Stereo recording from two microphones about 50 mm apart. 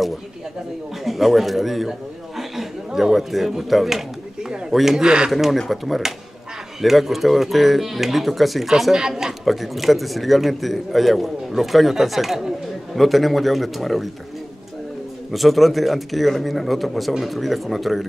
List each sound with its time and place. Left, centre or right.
1.0 s a man's voice: centre
4.4 s a sound: centre
4.7 s speech: centre
5.3 s speech: centre
15.3 s speech: centre